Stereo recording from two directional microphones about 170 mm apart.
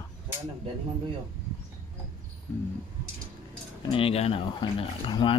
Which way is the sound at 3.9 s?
35° left (ahead or behind).